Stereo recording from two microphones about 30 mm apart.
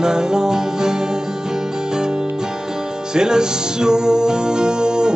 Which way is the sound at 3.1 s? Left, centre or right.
Right.